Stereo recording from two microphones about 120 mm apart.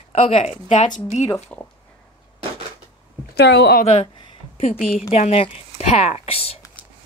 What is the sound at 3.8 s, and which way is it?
Speech, 55° left (ahead or behind).